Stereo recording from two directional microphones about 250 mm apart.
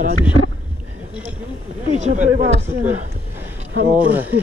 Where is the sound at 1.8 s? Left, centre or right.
Right.